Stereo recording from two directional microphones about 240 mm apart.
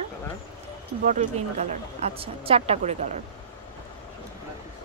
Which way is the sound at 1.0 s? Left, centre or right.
Right.